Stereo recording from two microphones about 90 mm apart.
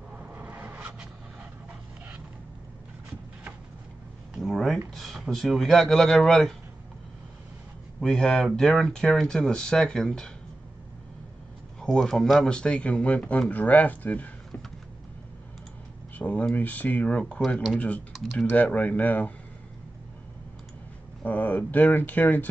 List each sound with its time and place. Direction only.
0.3 s rub: 20° right (ahead or behind)
4.3 s a sound: centre (ahead or behind)
4.9 s speech: centre (ahead or behind)
8.0 s speech: 5° left (ahead or behind)
11.8 s speech: centre (ahead or behind); by 14.3 s 20° left (ahead or behind)
16.2 s speech: 20° left (ahead or behind)
21.2 s speech: 20° left (ahead or behind)